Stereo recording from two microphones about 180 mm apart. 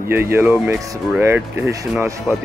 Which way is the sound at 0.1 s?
15° right (ahead or behind).